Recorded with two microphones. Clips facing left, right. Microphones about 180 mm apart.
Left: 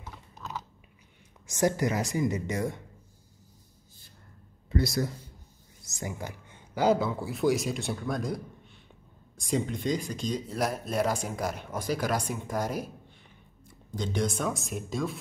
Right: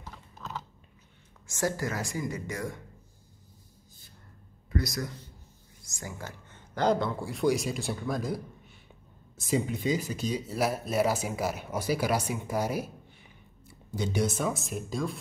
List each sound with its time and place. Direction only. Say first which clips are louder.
1.5 s speech: left 4 dB; 20° left (ahead or behind)
4.6 s speech: left 4 dB; 30° left (ahead or behind); by 8.4 s centre (ahead or behind)
9.4 s speech: right 1 dB; 5° right (ahead or behind)
13.9 s speech: right 1 dB; 10° right (ahead or behind)